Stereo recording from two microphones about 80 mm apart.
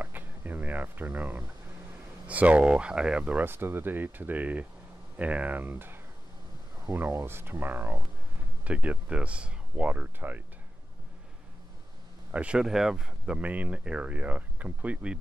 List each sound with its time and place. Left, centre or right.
0.0 s a sound: right
2.2 s speech: centre
12.3 s speech: centre